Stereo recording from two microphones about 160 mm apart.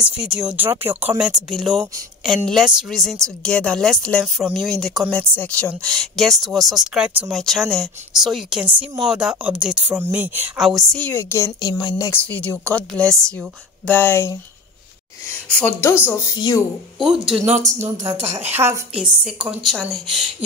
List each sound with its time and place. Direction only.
0.0 s speech: 5° right (ahead or behind)
8.6 s speech: 30° right (ahead or behind)
9.0 s speech: 5° right (ahead or behind)
10.6 s a woman's voice: centre (ahead or behind); by 12.2 s 20° left (ahead or behind)
12.2 s a woman's voice: 10° left (ahead or behind)
15.4 s a woman's voice: 15° left (ahead or behind)
17.0 s speech: 5° right (ahead or behind)
17.3 s speech: 40° right (ahead or behind)
17.7 s speech: 15° right (ahead or behind)
18.9 s speech: 5° right (ahead or behind)